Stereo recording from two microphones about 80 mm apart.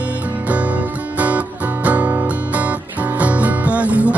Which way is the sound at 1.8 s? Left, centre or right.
Centre.